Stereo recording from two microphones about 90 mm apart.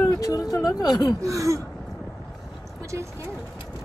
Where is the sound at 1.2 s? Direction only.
35° right (ahead or behind).